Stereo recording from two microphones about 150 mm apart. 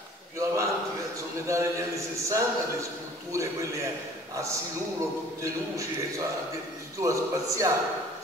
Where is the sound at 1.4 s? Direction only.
20° right (ahead or behind).